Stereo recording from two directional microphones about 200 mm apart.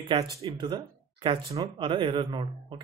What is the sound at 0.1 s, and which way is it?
Speech, 15° right (ahead or behind).